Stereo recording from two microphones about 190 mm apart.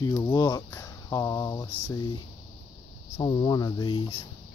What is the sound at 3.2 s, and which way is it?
Speech, 25° left (ahead or behind).